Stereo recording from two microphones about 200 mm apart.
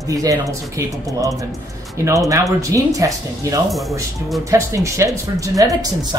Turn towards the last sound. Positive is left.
turn(degrees=-15)  # may be behind; listen again after turning